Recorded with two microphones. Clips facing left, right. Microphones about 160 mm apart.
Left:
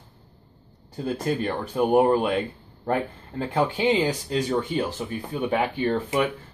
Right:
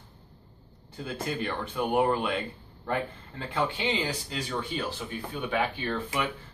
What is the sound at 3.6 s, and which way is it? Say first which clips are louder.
Speech: left 7 dB; 45° left (ahead or behind).